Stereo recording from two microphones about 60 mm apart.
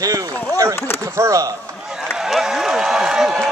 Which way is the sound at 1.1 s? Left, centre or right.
Right.